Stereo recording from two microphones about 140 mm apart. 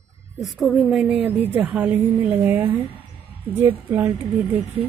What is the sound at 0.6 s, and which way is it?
A woman's voice, centre (ahead or behind).